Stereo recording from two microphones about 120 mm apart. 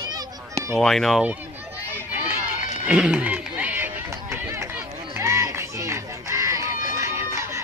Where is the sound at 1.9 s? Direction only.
15° right (ahead or behind).